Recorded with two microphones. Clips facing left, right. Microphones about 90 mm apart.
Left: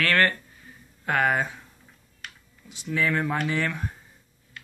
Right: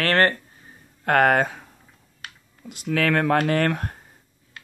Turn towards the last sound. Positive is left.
turn(degrees=-60)  # may be behind; listen again after turning